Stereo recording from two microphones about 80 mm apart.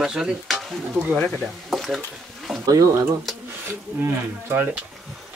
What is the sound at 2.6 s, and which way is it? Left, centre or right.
Speech, right.